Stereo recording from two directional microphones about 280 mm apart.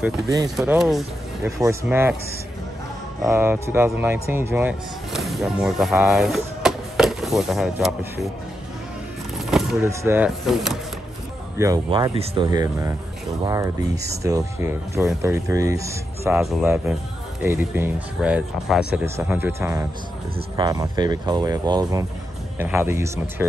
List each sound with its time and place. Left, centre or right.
0.0 s speech: centre
0.6 s speech: centre
3.3 s speech: centre
9.5 s speech: centre
11.5 s speech: centre